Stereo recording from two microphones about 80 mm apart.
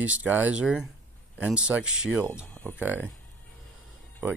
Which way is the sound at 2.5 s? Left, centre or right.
Centre.